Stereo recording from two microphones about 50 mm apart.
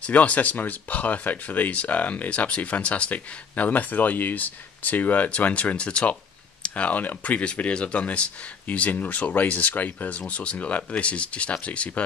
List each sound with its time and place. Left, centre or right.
0.0 s speech: left
6.7 s speech: left